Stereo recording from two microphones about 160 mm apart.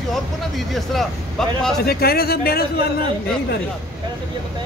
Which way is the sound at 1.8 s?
75° left (ahead or behind).